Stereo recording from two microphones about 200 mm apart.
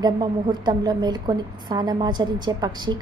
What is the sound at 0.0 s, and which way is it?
A woman's voice, 20° right (ahead or behind).